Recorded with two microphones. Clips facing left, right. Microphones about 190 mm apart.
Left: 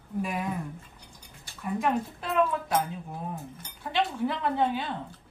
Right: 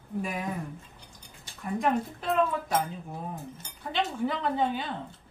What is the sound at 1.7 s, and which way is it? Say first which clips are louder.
Speech: right 1 dB; centre (ahead or behind).